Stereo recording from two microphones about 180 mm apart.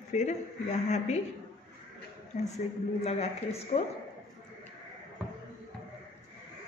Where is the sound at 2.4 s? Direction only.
35° left (ahead or behind).